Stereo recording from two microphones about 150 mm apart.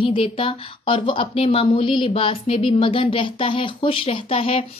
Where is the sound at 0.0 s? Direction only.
35° left (ahead or behind).